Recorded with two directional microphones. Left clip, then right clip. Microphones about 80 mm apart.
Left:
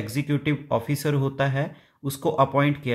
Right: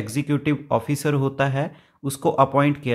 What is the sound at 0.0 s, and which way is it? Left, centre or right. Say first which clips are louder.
Speech: right 3 dB; right.